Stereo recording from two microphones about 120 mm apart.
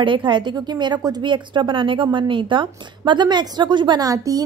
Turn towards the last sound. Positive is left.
turn(degrees=-30)  # may be behind; listen again after turning